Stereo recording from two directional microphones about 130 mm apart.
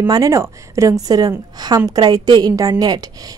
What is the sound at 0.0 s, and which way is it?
A woman's voice, 25° right (ahead or behind).